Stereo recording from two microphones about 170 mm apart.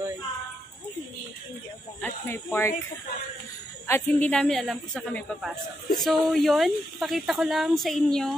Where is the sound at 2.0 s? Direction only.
15° left (ahead or behind).